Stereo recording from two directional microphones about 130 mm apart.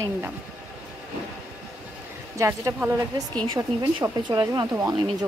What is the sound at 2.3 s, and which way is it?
Speech, 25° right (ahead or behind).